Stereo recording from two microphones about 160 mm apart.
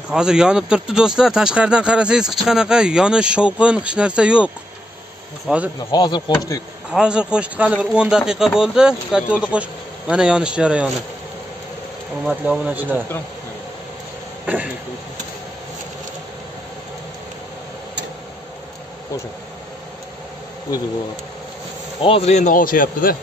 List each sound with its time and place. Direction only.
0.1 s speech: 5° right (ahead or behind)
5.8 s speech: 25° left (ahead or behind)
6.9 s speech: 5° right (ahead or behind)
12.3 s speech: 10° right (ahead or behind)
14.4 s speech: 10° right (ahead or behind)
22.0 s a man's voice: 40° left (ahead or behind); by 23.1 s 60° left (ahead or behind)